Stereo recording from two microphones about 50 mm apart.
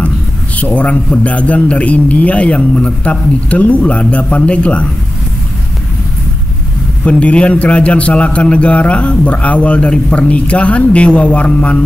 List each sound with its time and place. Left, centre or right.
0.6 s a man's voice: left
7.1 s a man's voice: left